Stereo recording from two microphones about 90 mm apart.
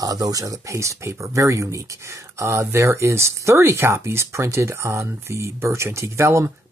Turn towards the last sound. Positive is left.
turn(degrees=-30)  # may be behind; listen again after turning